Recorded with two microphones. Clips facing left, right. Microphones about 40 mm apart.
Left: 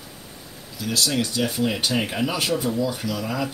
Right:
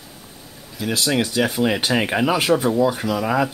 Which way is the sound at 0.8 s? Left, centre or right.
Right.